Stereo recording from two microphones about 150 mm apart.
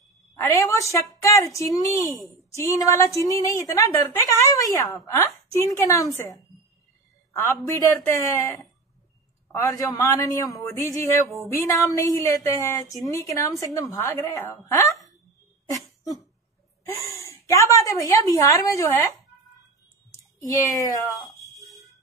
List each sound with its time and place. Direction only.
0.4 s a woman's voice: 20° left (ahead or behind)
3.2 s a woman's voice: 20° left (ahead or behind)
10.7 s a sound: 20° left (ahead or behind)
11.6 s a woman's voice: 20° left (ahead or behind)
15.7 s a sound: 25° left (ahead or behind)
16.9 s a woman's voice: 20° left (ahead or behind)